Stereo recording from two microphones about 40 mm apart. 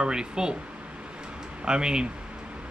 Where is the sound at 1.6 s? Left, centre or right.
Centre.